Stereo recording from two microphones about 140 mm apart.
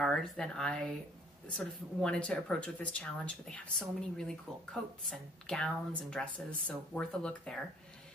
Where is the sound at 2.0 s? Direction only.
5° left (ahead or behind).